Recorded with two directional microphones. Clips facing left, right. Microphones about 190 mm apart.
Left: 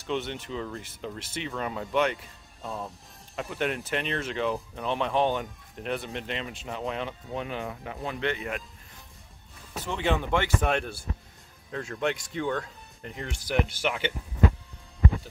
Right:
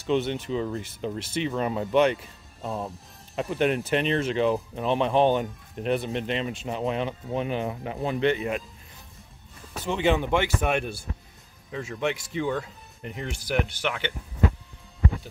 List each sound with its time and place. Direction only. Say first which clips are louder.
0.0 s speech: right 6 dB; 15° right (ahead or behind)
3.3 s speech: right 6 dB; 20° right (ahead or behind)
9.8 s speech: right 4 dB; 15° right (ahead or behind); by 14.1 s 5° left (ahead or behind)